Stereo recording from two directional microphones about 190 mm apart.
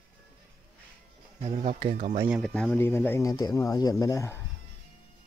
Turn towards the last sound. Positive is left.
turn(degrees=15)  # may be behind; listen again after turning